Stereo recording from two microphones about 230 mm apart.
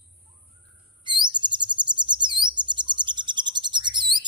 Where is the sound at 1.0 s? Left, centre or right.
Centre.